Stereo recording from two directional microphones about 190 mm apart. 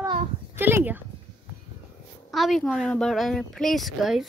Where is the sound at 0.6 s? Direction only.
10° right (ahead or behind).